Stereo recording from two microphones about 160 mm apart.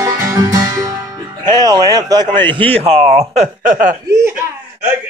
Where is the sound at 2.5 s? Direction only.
35° right (ahead or behind); by 3.9 s 55° right (ahead or behind).